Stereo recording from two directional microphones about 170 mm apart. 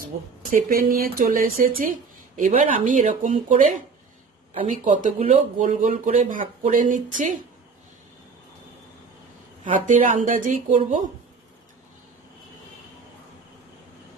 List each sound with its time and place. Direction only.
0.0 s speech: 55° right (ahead or behind)
4.8 s speech: 50° right (ahead or behind)
9.7 s speech: 50° right (ahead or behind)